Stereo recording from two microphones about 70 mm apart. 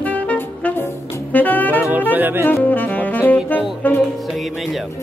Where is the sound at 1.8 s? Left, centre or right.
Right.